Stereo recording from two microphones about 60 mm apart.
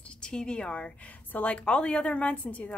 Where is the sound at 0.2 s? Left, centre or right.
Centre.